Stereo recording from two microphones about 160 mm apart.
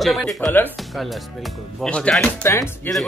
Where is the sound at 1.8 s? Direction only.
5° left (ahead or behind).